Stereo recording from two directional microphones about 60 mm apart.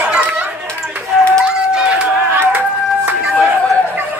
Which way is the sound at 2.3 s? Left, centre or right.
Right.